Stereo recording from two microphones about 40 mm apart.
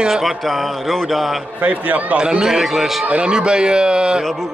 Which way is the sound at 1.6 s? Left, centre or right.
Right.